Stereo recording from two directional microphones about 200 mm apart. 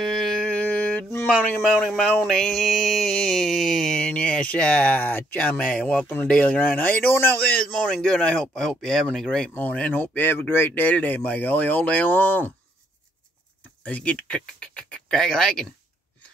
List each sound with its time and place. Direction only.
0.0 s mantra: 5° left (ahead or behind)
13.8 s speech: 5° left (ahead or behind)